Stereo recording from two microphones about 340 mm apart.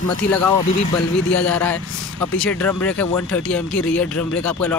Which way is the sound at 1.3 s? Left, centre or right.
Centre.